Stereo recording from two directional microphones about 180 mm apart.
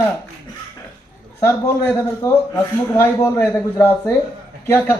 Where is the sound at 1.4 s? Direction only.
15° left (ahead or behind).